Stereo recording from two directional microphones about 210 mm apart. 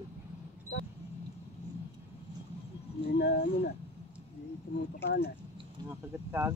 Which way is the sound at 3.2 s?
50° left (ahead or behind).